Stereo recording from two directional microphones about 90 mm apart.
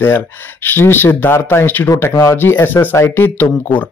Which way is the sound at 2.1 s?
45° left (ahead or behind).